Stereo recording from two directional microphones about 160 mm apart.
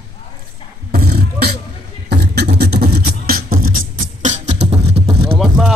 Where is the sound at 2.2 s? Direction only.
90° right; by 3.8 s 65° right (ahead or behind).